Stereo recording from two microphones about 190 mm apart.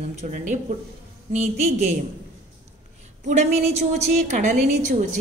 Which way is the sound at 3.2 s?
35° right (ahead or behind).